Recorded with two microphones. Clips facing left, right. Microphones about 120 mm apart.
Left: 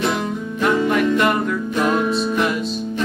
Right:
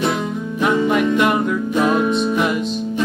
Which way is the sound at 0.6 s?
5° right (ahead or behind).